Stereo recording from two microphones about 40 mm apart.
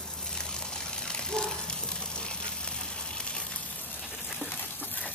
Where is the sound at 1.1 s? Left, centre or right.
Centre.